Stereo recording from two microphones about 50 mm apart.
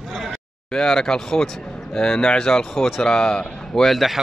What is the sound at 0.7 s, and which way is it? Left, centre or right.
Speech, centre.